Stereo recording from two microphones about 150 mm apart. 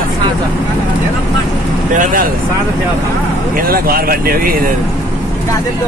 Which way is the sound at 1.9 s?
65° right (ahead or behind).